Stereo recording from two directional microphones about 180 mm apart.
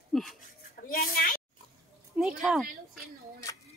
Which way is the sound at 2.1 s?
5° right (ahead or behind).